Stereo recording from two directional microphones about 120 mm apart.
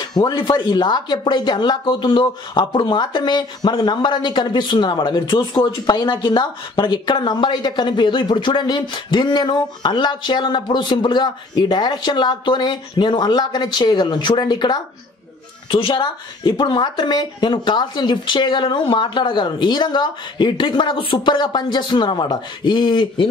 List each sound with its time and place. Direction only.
0.2 s speech: 40° left (ahead or behind)